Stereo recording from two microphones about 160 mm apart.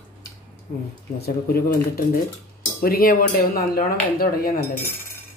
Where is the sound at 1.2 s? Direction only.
75° left (ahead or behind).